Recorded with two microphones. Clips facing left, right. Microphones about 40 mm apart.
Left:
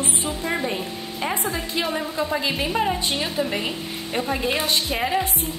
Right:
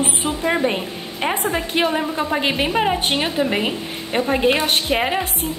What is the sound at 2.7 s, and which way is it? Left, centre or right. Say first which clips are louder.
A woman's voice: right 4 dB; right.